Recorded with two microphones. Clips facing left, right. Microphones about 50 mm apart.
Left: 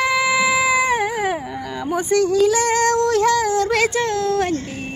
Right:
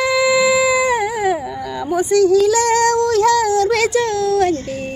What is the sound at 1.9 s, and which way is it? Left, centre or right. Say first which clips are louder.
Speech: right 5 dB; left.